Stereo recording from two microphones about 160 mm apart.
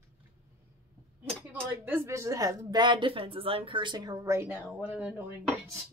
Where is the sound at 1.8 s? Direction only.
15° right (ahead or behind).